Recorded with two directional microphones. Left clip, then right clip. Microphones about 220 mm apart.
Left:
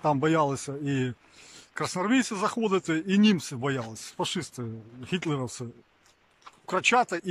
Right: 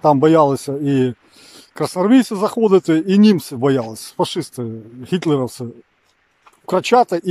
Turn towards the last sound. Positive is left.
turn(degrees=-20)  # may be behind; listen again after turning